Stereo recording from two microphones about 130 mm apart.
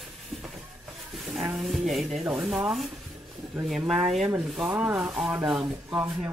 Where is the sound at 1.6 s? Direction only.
Centre (ahead or behind).